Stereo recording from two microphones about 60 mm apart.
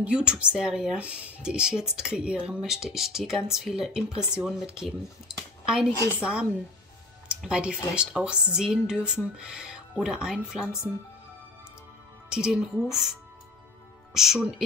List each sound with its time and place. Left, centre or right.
0.0 s speech: centre
6.0 s speech: centre
12.3 s speech: centre
14.1 s speech: centre